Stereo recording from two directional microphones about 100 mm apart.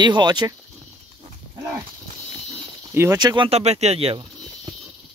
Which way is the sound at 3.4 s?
90° right.